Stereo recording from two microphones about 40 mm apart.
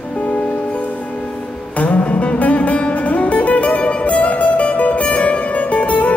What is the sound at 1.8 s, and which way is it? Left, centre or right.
Music, left.